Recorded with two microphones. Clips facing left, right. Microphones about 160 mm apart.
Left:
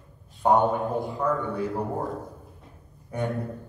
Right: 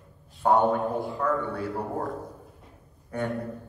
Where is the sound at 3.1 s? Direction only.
15° left (ahead or behind).